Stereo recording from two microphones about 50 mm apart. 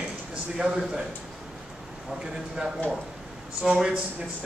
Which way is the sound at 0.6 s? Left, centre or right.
Centre.